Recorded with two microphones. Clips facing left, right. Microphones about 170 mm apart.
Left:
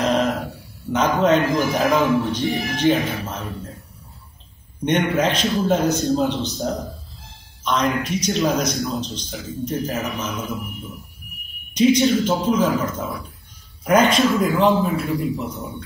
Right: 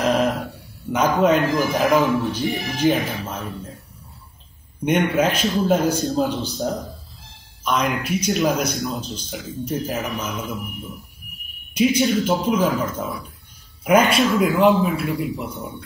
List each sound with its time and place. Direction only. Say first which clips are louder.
0.0 s a sound: even; 10° right (ahead or behind)
0.9 s speech: even; 10° right (ahead or behind)
4.8 s speech: right 1 dB; 10° right (ahead or behind)
11.7 s speech: left 2 dB; 10° right (ahead or behind)
13.8 s speech: even; 10° right (ahead or behind)